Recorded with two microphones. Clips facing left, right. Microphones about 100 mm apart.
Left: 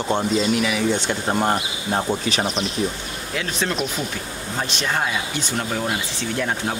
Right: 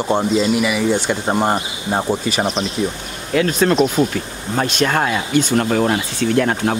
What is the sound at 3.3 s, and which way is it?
Speech, 55° right (ahead or behind).